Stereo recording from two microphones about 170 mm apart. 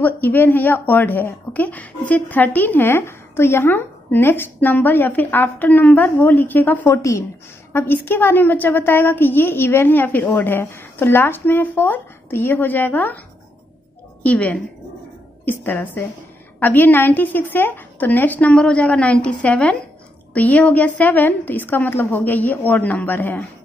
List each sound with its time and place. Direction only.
0.0 s a woman's voice: 10° left (ahead or behind)
14.2 s a woman's voice: 5° left (ahead or behind)